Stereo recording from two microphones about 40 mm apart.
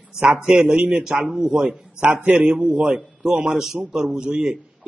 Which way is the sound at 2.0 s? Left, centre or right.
Right.